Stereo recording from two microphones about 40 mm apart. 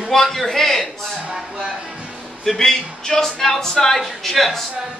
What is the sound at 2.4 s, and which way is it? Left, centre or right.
Speech, centre.